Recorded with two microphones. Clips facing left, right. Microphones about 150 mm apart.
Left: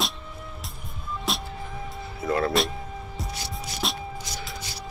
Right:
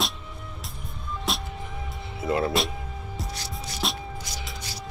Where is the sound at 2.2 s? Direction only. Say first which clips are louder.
Even; 20° right (ahead or behind).